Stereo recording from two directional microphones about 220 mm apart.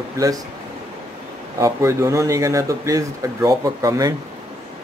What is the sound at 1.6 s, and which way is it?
A man's voice, 15° right (ahead or behind).